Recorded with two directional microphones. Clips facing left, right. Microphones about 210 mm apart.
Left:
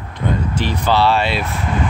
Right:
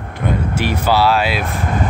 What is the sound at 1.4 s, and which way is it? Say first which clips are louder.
Speech: right 1 dB; 45° right (ahead or behind).